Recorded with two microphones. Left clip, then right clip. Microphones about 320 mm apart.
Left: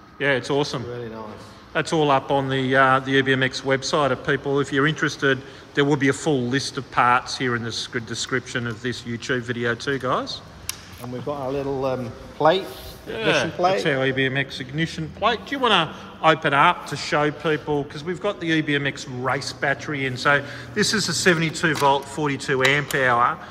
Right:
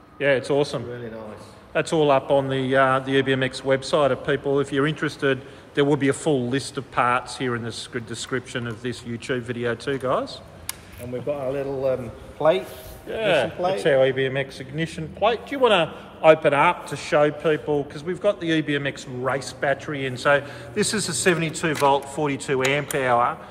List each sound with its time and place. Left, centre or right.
0.2 s speech: centre
12.4 s a man's voice: left
13.1 s speech: centre